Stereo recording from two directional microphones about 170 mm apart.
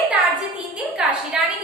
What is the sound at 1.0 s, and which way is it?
Speech, 5° right (ahead or behind).